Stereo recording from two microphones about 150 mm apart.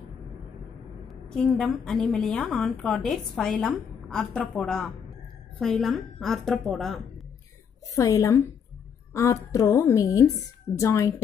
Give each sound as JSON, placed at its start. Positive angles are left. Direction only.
{"t": 1.0, "sound": "a woman's voice", "side_deg": 0}
{"t": 7.9, "sound": "a woman's voice", "side_deg": 20}